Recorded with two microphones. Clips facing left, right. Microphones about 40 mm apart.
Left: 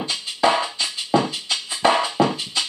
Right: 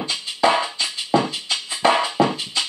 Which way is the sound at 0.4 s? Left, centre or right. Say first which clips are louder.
Right 1 dB; centre.